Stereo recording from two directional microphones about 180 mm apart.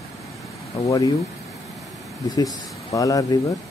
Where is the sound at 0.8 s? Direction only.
20° left (ahead or behind).